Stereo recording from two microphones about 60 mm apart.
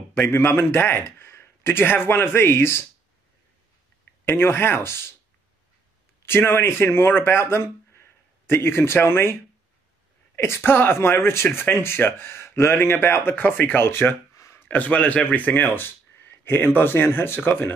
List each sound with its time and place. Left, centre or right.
0.3 s speech: left
4.3 s speech: left
6.2 s speech: left
14.3 s a sound: left
14.7 s speech: left